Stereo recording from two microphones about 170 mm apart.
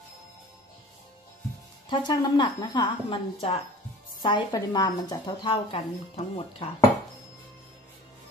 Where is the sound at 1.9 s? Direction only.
25° left (ahead or behind).